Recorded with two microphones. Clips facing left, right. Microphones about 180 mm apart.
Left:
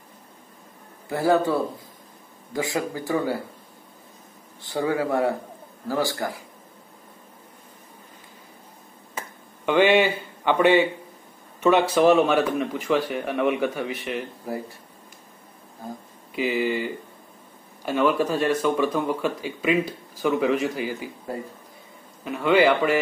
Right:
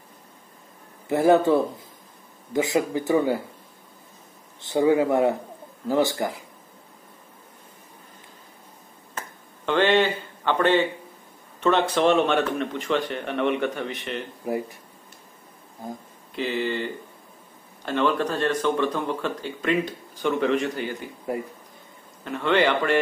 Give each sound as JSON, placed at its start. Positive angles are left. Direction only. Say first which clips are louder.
{"t": 1.0, "sound": "speech", "louder": "right 3 dB", "side_deg": -20}
{"t": 4.6, "sound": "speech", "louder": "right 5 dB", "side_deg": -20}
{"t": 9.2, "sound": "finger snapping", "louder": "left 1 dB", "side_deg": 10}
{"t": 9.7, "sound": "a man's voice", "louder": "left 2 dB", "side_deg": 10}
{"t": 14.4, "sound": "speech", "louder": "right 4 dB", "side_deg": -15}
{"t": 16.3, "sound": "speech", "louder": "left 2 dB", "side_deg": 10}
{"t": 22.2, "sound": "speech", "louder": "left 3 dB", "side_deg": 10}